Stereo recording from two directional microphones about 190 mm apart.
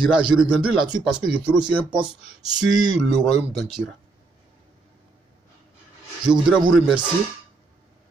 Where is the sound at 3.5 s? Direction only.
Centre (ahead or behind).